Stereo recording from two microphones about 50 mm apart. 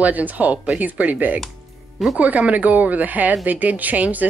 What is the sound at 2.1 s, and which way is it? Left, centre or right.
Speech, right.